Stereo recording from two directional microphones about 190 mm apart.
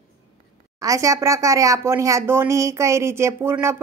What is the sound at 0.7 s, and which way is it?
Speech, 15° right (ahead or behind).